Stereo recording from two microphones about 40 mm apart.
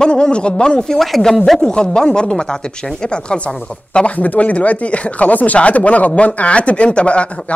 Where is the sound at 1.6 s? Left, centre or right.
Left.